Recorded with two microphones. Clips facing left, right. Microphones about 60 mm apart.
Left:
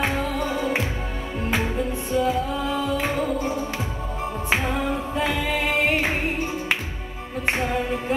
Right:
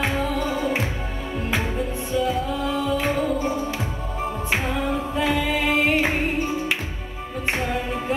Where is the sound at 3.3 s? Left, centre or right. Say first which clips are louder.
Right 1 dB; right.